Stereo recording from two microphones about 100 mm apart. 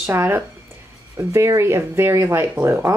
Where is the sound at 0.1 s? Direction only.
20° right (ahead or behind).